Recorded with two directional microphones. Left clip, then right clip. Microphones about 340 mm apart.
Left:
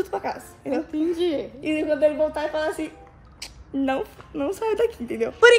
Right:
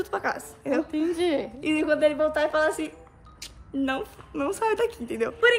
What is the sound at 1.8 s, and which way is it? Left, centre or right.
Speech, centre.